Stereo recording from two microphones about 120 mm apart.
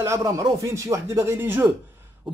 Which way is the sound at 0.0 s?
25° right (ahead or behind).